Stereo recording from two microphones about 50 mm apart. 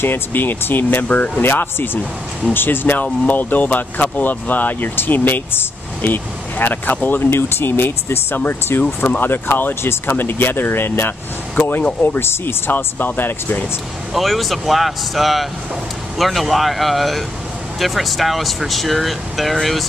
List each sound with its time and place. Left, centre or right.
0.0 s speech: left
1.0 s speech: left
1.4 s speech: left
8.8 s speech: left
9.2 s speech: left
12.7 s speech: left
14.1 s speech: centre